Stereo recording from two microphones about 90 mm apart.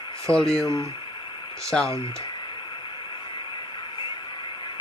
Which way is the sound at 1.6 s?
5° left (ahead or behind).